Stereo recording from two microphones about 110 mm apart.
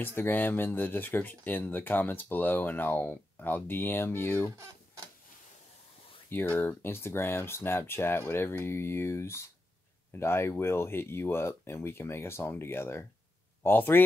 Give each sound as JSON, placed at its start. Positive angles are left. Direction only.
{"t": 0.0, "sound": "speech", "side_deg": 20}
{"t": 6.3, "sound": "speech", "side_deg": 15}